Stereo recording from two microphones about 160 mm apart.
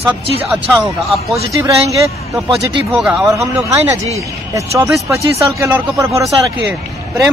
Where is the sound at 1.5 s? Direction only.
20° right (ahead or behind).